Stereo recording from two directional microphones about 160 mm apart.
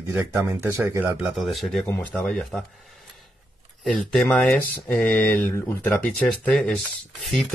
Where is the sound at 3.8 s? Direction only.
Centre (ahead or behind).